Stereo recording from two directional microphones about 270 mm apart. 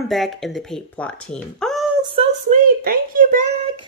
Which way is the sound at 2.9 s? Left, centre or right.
Right.